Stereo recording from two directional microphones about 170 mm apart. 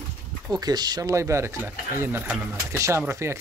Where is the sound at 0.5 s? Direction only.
25° right (ahead or behind).